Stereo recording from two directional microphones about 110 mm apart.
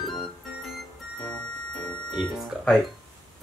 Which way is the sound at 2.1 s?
5° left (ahead or behind).